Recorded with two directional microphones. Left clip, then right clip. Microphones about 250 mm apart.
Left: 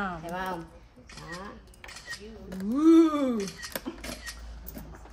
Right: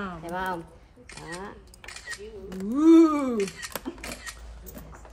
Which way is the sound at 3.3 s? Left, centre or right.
Right.